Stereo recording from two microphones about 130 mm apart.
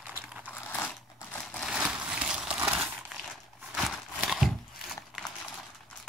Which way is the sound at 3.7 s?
Centre (ahead or behind).